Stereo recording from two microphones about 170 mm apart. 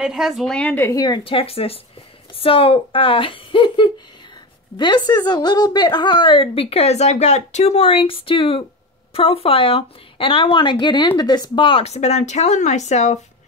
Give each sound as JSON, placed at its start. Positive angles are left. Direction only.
{"t": 0.0, "sound": "a woman's voice", "side_deg": -5}